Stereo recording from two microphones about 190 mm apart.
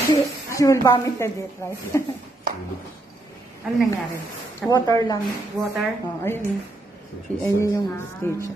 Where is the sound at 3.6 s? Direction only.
Centre (ahead or behind).